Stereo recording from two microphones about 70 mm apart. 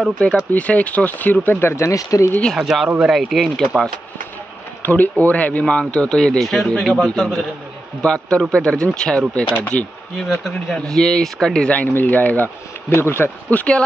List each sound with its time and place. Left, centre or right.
0.0 s speech: centre; by 2.0 s left
2.0 s speech: left
2.5 s speech: centre
4.8 s a man's voice: left; by 7.4 s centre
8.0 s a man's voice: centre
10.4 s a man's voice: centre
11.8 s speech: left